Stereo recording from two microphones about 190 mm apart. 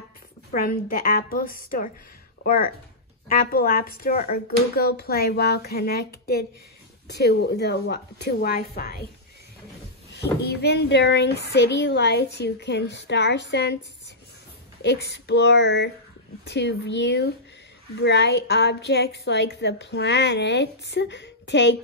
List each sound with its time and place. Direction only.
0.5 s a woman's voice: 45° left (ahead or behind)
10.4 s a woman's voice: 60° left (ahead or behind)
14.8 s a woman's voice: 65° left (ahead or behind)